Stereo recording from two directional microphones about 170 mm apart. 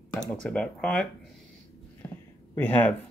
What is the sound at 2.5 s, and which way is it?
Speech, 10° left (ahead or behind).